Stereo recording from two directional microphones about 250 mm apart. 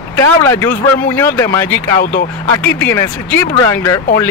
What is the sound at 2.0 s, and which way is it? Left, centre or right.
Speech, left.